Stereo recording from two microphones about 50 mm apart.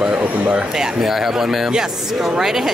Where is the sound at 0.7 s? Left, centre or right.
Centre.